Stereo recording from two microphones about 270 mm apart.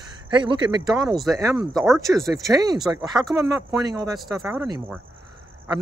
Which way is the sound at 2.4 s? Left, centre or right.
Centre.